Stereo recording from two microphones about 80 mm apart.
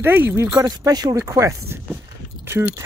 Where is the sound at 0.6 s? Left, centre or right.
Right.